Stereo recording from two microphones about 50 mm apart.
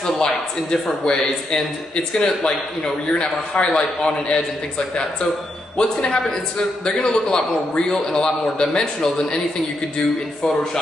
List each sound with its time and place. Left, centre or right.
0.0 s a sound: centre
1.0 s a man's voice: centre
3.5 s a man's voice: centre
10.4 s a man's voice: centre